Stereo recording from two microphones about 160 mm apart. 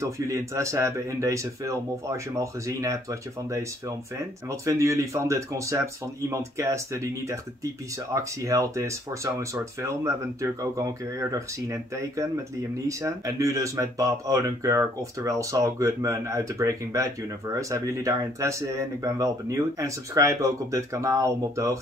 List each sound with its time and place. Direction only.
0.0 s speech: 20° right (ahead or behind)